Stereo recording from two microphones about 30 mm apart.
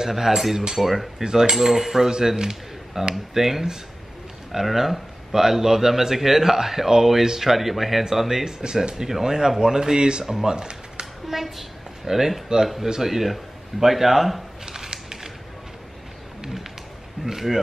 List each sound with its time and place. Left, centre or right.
0.1 s speech: centre
1.2 s speech: right
1.6 s speech: centre
3.3 s speech: centre
8.5 s speech: centre
11.2 s a child's voice: centre
14.7 s a sound: right
17.3 s speech: centre